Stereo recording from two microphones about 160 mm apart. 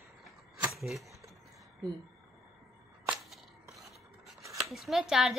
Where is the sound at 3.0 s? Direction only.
Centre (ahead or behind).